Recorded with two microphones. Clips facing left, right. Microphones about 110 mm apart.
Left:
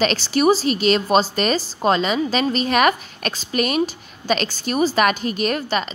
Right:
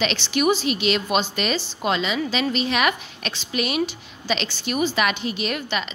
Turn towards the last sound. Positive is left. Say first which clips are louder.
# left 5 dB
turn(degrees=40)  # may be behind; listen again after turning